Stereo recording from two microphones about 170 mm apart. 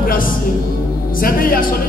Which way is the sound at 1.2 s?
60° left (ahead or behind).